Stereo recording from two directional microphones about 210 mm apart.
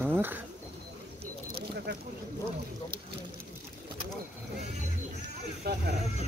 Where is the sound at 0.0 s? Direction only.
10° right (ahead or behind).